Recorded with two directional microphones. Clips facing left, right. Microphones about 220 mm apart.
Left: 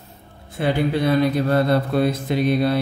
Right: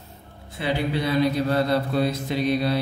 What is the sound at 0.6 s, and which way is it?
Speech, 50° left (ahead or behind).